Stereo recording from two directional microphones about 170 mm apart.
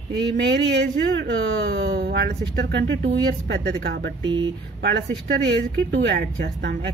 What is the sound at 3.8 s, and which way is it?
Speech, 65° right (ahead or behind).